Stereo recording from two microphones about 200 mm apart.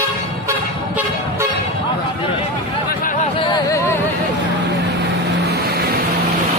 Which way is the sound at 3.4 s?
15° left (ahead or behind).